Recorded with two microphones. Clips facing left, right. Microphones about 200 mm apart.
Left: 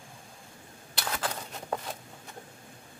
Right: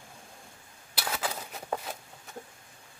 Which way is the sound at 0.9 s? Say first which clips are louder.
Even; 5° right (ahead or behind).